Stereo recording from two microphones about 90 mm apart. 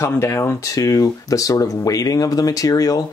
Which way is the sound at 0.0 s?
30° left (ahead or behind).